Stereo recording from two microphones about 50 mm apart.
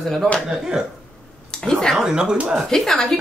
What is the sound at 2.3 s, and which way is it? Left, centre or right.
Speech, right.